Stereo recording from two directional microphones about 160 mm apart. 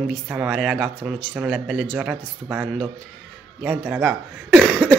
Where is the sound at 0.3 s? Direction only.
5° right (ahead or behind).